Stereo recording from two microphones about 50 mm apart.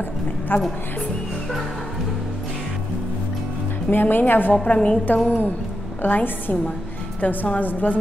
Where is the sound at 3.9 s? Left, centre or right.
Left.